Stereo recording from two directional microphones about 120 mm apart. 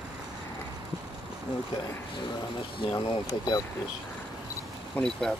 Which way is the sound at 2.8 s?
40° left (ahead or behind).